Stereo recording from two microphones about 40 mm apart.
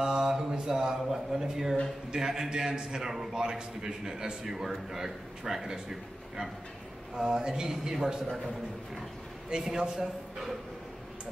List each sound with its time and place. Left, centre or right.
0.0 s a sound: centre
1.1 s a man's voice: centre
9.6 s a man's voice: centre